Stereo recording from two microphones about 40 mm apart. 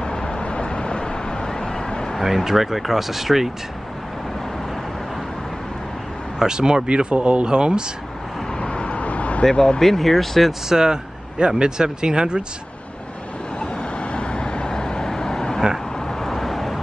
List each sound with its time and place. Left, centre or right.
0.0 s vehicle: left
2.2 s speech: centre
6.4 s speech: centre
8.5 s vehicle: left
9.4 s speech: centre
9.8 s speech: centre
10.7 s speech: centre
14.1 s vehicle: left; by 16.8 s centre